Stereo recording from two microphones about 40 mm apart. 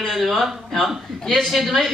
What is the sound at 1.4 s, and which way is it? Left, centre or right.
Speech, centre.